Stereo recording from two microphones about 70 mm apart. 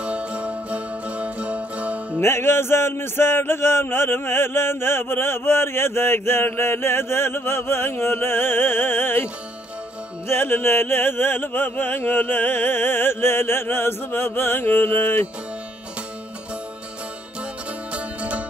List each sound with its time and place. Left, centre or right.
0.0 s music: centre
2.1 s music: left
17.9 s music: centre